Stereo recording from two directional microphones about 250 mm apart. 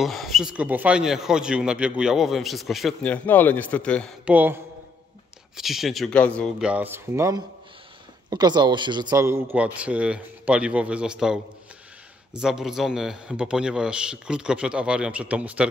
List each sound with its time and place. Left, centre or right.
0.0 s speech: centre
5.6 s speech: centre
12.4 s speech: centre